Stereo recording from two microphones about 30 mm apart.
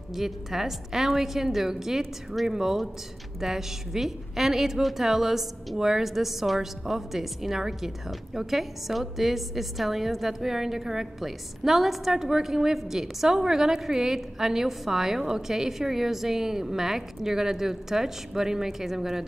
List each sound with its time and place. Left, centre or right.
0.1 s a woman's voice: centre
5.8 s a woman's voice: centre
6.0 s a woman's voice: centre